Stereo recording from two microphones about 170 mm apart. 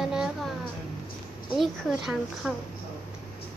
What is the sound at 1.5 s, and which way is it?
A woman's voice, centre (ahead or behind).